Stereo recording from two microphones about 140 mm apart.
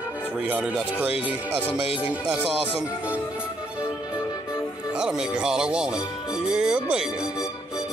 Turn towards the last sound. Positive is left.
turn(degrees=-5)  # may be behind; listen again after turning